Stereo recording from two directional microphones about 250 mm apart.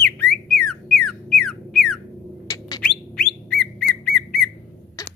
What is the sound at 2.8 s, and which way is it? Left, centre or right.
Whistle, centre.